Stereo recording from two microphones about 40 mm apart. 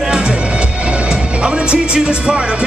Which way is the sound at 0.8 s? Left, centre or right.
Right.